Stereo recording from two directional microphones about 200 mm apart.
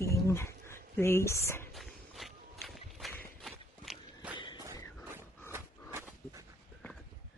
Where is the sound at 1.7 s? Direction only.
Centre (ahead or behind).